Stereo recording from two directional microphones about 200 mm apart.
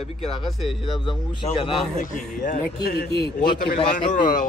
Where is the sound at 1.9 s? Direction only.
40° left (ahead or behind).